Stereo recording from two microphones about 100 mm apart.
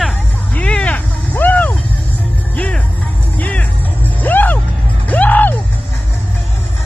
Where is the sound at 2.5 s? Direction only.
15° left (ahead or behind).